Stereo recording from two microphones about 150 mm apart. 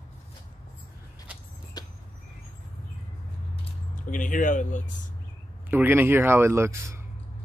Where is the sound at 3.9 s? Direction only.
60° left (ahead or behind).